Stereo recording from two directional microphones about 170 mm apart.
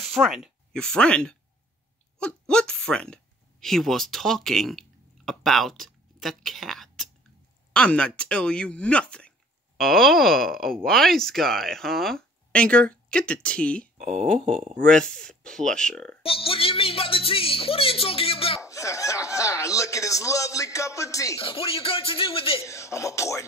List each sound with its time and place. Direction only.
0.0 s speech: centre (ahead or behind)
16.2 s a man's voice: 35° left (ahead or behind)
18.6 s speech: 20° left (ahead or behind)
21.4 s a man's voice: 35° left (ahead or behind)
22.6 s speech: 15° left (ahead or behind)